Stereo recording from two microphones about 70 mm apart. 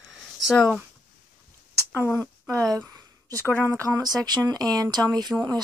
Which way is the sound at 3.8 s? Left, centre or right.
Right.